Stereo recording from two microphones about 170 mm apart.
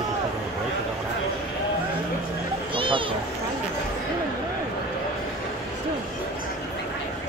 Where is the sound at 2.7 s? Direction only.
30° right (ahead or behind).